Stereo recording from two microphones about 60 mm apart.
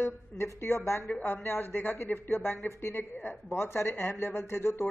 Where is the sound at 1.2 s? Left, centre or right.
Left.